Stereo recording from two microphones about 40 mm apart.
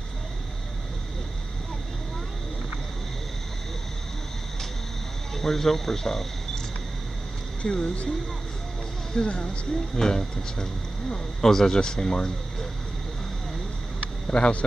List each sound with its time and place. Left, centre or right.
5.3 s speech: centre
7.6 s speech: left
9.1 s speech: left
14.0 s a sound: left